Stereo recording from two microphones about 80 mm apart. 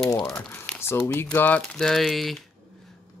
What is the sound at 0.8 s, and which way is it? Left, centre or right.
Speech, left.